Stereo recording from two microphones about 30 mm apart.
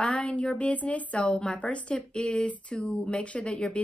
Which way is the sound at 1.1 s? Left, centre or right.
Left.